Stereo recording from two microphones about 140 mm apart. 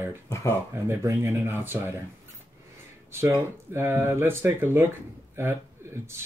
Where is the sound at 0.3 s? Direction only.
20° left (ahead or behind).